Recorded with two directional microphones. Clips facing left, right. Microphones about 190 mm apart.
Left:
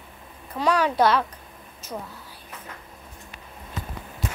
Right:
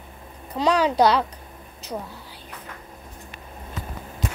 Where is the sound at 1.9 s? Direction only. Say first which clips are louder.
Right 3 dB; 15° right (ahead or behind).